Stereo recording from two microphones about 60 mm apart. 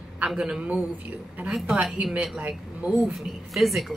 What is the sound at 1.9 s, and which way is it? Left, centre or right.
A woman's voice, right.